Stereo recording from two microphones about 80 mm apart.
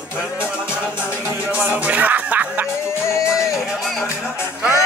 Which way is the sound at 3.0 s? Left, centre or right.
Left.